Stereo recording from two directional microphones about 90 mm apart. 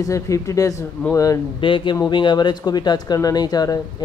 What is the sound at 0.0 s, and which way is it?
Speech, 35° left (ahead or behind).